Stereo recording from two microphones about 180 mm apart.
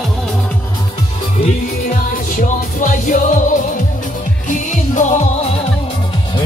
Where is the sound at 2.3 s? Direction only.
45° left (ahead or behind).